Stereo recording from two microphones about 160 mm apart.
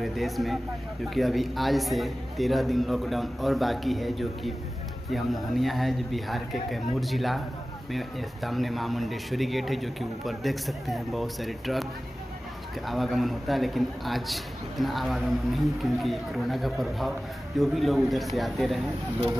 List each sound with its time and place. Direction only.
0.0 s a man's voice: centre (ahead or behind)
12.8 s a man's voice: centre (ahead or behind)